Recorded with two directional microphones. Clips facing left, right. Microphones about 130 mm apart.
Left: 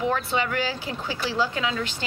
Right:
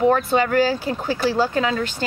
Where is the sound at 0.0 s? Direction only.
45° right (ahead or behind).